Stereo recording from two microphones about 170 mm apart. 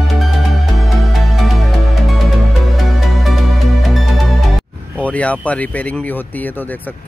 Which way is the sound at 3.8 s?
Centre (ahead or behind).